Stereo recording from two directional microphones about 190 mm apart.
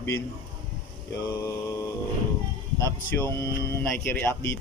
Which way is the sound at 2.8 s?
15° left (ahead or behind).